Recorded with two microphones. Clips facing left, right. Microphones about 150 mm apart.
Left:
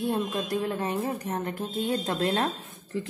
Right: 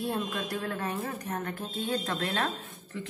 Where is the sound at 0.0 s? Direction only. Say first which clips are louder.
Left 4 dB; 20° left (ahead or behind).